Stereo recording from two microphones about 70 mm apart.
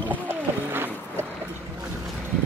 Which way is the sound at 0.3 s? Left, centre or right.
Right.